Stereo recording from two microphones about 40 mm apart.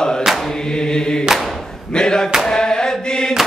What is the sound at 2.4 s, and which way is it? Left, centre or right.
Chant, centre.